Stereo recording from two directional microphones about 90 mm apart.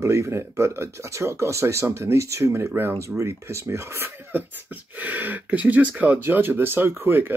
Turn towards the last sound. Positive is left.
turn(degrees=-25)  # may be behind; listen again after turning